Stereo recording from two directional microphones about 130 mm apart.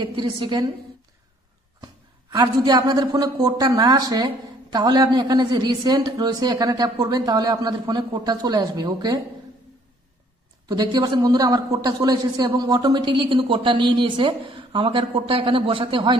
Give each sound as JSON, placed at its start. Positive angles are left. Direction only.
{"t": 0.0, "sound": "a man's voice", "side_deg": -35}
{"t": 2.3, "sound": "a man's voice", "side_deg": -35}
{"t": 10.7, "sound": "a man's voice", "side_deg": -35}